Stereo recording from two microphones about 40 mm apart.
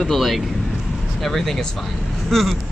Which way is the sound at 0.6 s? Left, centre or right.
Centre.